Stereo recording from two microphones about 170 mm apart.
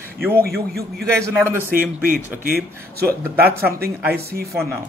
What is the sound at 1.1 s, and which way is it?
Speech, 15° right (ahead or behind).